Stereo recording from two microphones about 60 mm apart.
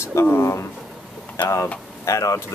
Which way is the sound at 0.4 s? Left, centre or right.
Left.